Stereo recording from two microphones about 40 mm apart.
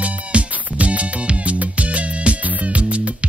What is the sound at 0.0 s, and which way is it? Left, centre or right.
Music, right.